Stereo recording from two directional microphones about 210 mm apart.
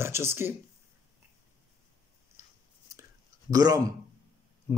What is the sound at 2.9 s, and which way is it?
Whispering, 15° right (ahead or behind).